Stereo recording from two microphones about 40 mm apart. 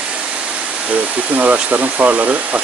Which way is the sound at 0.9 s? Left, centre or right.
Right.